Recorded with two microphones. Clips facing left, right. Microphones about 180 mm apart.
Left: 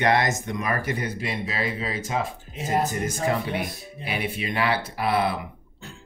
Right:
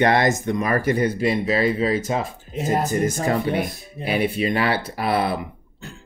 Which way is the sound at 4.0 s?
40° right (ahead or behind).